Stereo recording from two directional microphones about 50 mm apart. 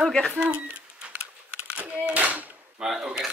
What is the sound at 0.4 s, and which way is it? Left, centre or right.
Speech, right.